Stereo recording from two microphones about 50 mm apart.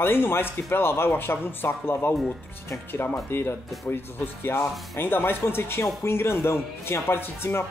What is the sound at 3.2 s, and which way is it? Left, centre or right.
Speech, left.